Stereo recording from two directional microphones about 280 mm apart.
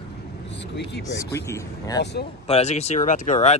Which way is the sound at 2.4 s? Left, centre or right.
Left.